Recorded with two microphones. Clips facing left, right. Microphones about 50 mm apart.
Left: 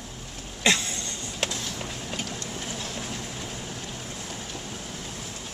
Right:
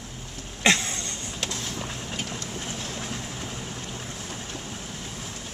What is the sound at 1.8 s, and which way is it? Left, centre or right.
Vehicle, centre.